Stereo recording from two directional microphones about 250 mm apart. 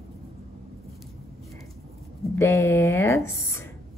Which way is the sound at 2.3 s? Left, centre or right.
Centre.